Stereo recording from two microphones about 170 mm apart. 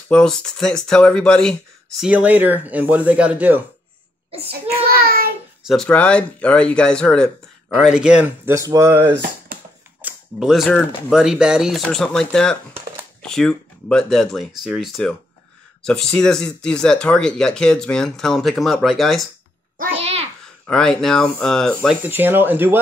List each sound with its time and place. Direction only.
0.1 s speech: 5° left (ahead or behind)
2.0 s speech: 10° right (ahead or behind)
4.5 s child singing: 65° right (ahead or behind)
5.7 s speech: 5° left (ahead or behind)
8.5 s speech: 20° right (ahead or behind)
9.5 s typewriter: 55° right (ahead or behind)
10.0 s speech: centre (ahead or behind)
20.0 s babbling: 40° right (ahead or behind)
20.6 s speech: 5° left (ahead or behind)
22.0 s speech: 10° right (ahead or behind)